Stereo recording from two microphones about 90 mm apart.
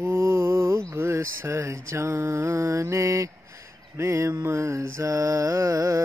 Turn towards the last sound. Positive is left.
turn(degrees=-40)  # may be behind; listen again after turning